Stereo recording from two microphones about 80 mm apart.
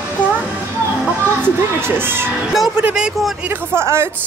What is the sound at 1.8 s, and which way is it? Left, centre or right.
Speech, right.